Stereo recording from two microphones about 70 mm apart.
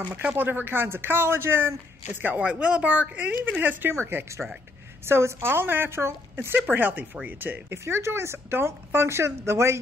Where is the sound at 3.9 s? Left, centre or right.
Right.